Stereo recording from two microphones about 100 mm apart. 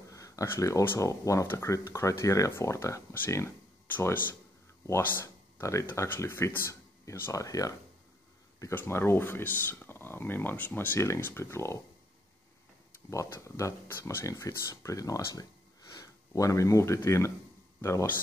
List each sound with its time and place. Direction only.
0.1 s a sound: 35° left (ahead or behind)
0.8 s speech: 30° left (ahead or behind)
8.7 s speech: 25° left (ahead or behind)
13.1 s speech: 30° left (ahead or behind)